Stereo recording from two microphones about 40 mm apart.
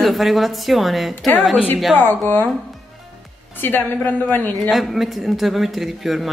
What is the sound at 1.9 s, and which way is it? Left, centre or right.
Speech, left.